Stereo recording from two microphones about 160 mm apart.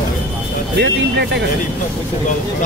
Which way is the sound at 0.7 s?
90° right.